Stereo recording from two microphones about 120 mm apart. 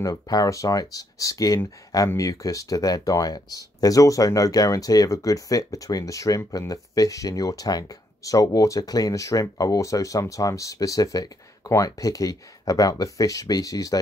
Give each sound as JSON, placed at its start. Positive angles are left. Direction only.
{"t": 0.0, "sound": "speech", "side_deg": 30}